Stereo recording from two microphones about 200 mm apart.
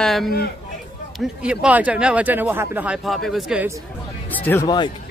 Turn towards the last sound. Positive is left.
turn(degrees=10)  # may be behind; listen again after turning